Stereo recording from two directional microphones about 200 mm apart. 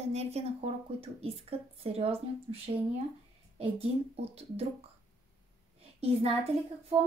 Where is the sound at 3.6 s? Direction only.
30° right (ahead or behind).